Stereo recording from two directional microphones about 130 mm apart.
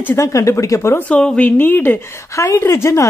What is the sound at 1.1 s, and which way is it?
A woman's voice, 5° left (ahead or behind).